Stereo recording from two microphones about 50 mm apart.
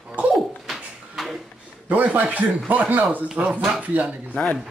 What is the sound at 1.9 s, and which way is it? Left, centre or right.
Speech, right.